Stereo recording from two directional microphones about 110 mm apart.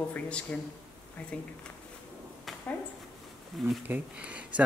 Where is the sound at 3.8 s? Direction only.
15° right (ahead or behind).